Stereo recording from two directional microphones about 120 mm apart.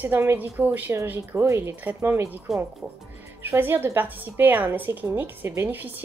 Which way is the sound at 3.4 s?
20° right (ahead or behind).